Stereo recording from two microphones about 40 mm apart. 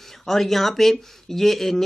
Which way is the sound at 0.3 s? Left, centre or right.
Centre.